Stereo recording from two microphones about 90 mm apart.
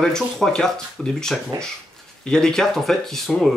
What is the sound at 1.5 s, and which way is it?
Speech, 40° right (ahead or behind).